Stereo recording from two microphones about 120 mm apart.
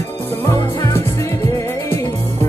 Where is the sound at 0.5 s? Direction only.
25° left (ahead or behind).